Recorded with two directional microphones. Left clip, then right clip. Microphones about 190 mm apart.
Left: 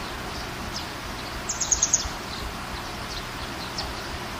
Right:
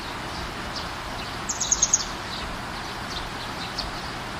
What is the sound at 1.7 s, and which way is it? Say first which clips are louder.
Bird vocalization: right 1 dB; 30° right (ahead or behind).